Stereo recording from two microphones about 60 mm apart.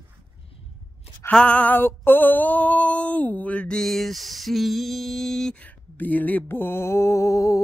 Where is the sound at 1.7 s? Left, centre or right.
Left.